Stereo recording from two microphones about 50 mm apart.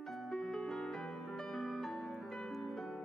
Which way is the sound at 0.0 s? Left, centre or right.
Centre.